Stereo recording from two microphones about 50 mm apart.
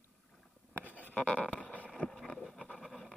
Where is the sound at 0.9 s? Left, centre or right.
Left.